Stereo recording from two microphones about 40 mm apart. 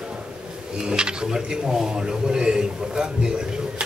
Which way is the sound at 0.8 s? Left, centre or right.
Right.